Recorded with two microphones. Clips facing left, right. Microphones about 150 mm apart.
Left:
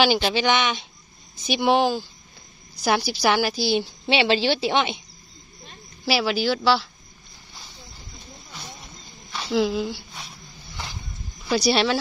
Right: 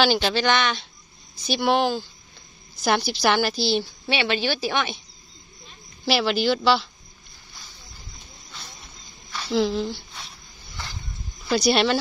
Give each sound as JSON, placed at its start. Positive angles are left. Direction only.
{"t": 0.0, "sound": "a woman's voice", "side_deg": 10}
{"t": 4.1, "sound": "a woman's voice", "side_deg": 25}
{"t": 6.0, "sound": "speech", "side_deg": 5}
{"t": 9.5, "sound": "speech", "side_deg": 0}
{"t": 11.4, "sound": "speech", "side_deg": 5}